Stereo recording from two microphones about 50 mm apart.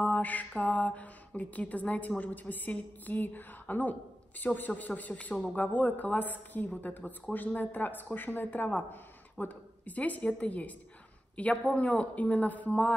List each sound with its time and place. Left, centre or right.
0.0 s mantra: left
11.3 s a man's voice: left